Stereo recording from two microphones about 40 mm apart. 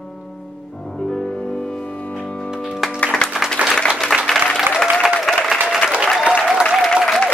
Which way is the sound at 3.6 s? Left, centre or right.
Right.